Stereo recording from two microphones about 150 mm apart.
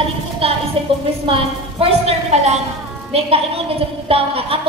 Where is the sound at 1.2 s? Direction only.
35° right (ahead or behind).